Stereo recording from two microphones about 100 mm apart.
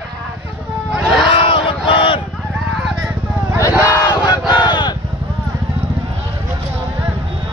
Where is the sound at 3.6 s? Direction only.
30° left (ahead or behind).